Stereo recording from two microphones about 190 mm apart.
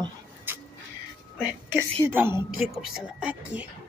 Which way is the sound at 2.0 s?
10° right (ahead or behind).